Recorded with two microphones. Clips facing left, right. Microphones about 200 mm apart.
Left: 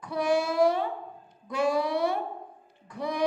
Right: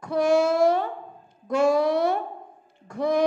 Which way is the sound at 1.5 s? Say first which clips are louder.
Right 6 dB; 45° right (ahead or behind).